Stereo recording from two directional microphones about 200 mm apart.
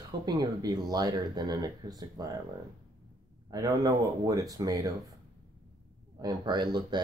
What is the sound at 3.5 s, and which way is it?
Speech, 20° right (ahead or behind).